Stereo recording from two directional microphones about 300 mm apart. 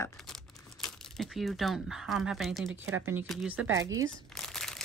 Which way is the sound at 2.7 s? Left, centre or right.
Right.